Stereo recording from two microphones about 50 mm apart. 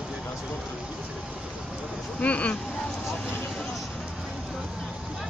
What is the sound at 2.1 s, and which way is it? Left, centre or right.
Speech, left.